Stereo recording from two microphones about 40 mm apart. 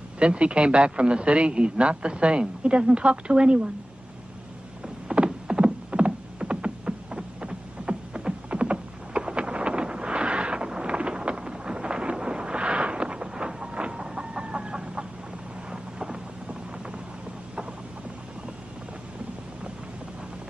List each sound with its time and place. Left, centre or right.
0.2 s a man's voice: right
4.8 s a sound: right
13.6 s chicken: right
15.7 s vehicle: centre